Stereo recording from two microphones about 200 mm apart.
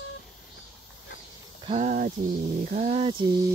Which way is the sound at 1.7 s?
40° right (ahead or behind).